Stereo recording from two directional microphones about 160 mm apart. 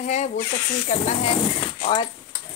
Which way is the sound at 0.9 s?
40° left (ahead or behind).